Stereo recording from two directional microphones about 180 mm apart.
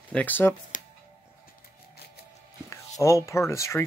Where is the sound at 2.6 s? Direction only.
15° left (ahead or behind).